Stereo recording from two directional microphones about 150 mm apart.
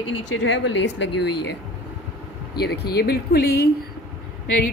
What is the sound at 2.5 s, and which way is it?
Speech, 90° left.